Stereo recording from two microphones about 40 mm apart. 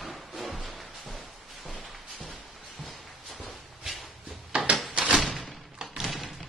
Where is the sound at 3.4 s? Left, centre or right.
Centre.